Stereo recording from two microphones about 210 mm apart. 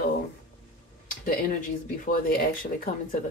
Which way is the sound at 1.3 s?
40° left (ahead or behind).